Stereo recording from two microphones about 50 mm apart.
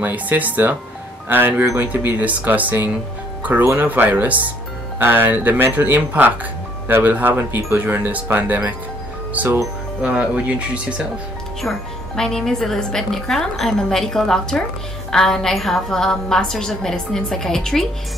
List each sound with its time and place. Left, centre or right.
0.0 s speech: right
1.3 s speech: right
1.8 s speech: right
3.7 s speech: right
12.2 s a woman's voice: centre